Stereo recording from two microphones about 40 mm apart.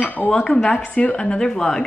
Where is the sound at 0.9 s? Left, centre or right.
Left.